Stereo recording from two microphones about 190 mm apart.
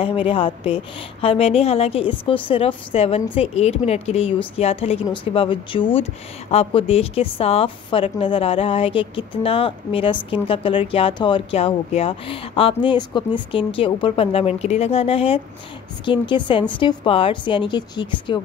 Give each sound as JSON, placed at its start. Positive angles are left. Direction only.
{"t": 0.0, "sound": "a woman's voice", "side_deg": 30}